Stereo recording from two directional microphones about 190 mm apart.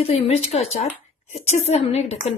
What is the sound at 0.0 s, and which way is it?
A woman's voice, 35° left (ahead or behind).